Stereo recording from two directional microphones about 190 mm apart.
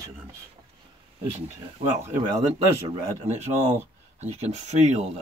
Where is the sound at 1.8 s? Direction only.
35° right (ahead or behind).